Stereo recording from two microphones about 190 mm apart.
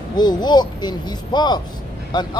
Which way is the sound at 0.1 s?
20° left (ahead or behind).